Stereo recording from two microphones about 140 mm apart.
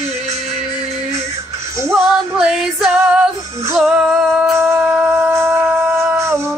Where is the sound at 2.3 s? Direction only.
5° right (ahead or behind).